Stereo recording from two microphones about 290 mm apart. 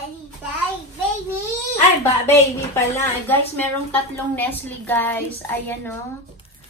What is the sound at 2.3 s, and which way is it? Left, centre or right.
Speech, centre.